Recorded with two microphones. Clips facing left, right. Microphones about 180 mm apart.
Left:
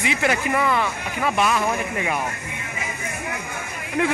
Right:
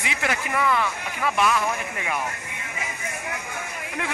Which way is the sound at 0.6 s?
25° left (ahead or behind).